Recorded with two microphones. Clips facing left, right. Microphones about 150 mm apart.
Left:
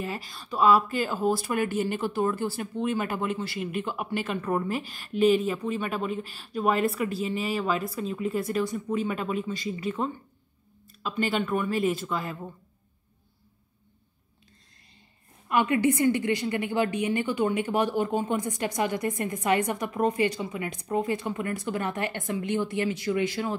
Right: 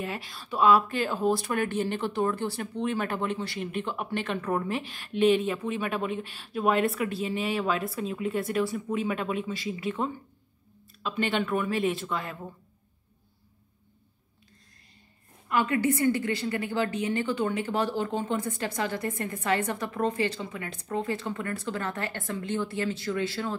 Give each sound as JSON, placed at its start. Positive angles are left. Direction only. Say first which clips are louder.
{"t": 0.0, "sound": "speech", "louder": "left 1 dB", "side_deg": 0}
{"t": 15.4, "sound": "a woman's voice", "louder": "left 2 dB", "side_deg": 20}